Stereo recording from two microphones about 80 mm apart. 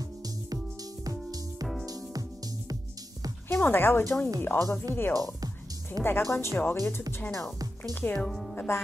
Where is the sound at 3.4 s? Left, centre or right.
Left.